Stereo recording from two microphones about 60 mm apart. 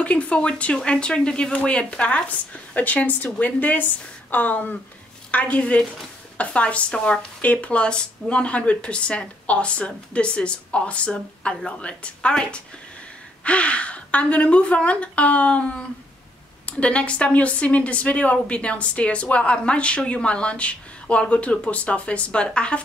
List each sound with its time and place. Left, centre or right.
0.0 s speech: left